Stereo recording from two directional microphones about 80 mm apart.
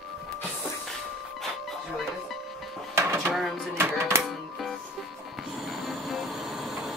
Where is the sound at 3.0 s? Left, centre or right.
Right.